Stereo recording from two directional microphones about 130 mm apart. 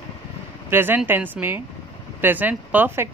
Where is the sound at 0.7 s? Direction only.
15° right (ahead or behind).